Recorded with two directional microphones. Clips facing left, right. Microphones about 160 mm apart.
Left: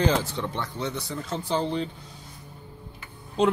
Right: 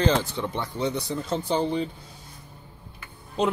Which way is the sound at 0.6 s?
15° right (ahead or behind).